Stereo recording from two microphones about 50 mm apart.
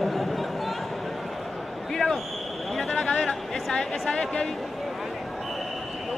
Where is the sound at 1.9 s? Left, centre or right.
Centre.